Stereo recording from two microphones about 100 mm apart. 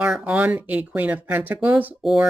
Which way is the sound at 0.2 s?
15° right (ahead or behind).